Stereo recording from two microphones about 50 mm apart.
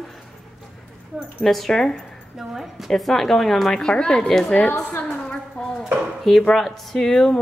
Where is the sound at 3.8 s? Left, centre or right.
Centre.